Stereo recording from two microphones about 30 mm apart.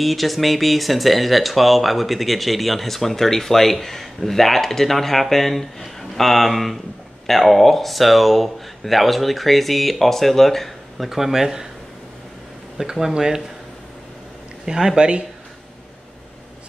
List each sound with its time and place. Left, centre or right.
0.0 s speech: centre
11.1 s speech: centre
12.8 s speech: right
15.0 s speech: right